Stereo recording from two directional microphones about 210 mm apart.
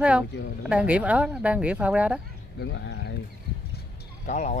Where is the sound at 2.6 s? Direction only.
60° left (ahead or behind).